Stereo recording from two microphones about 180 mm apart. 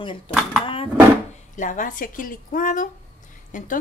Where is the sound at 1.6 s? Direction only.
45° left (ahead or behind).